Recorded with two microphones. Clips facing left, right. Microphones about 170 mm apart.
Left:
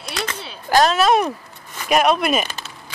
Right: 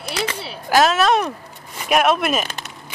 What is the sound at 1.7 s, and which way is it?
Speech, centre (ahead or behind).